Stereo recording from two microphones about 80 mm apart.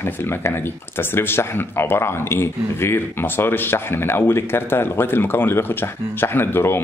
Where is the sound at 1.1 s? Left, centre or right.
Left.